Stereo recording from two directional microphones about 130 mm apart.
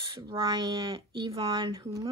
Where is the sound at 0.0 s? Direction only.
40° right (ahead or behind).